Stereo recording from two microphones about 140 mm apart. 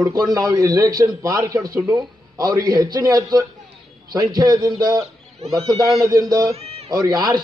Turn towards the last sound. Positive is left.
turn(degrees=-30)  # may be behind; listen again after turning